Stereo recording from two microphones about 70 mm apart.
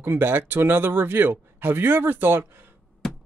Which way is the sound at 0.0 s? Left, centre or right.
Right.